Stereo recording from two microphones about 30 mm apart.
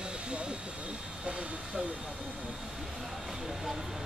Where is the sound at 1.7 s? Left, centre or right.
Right.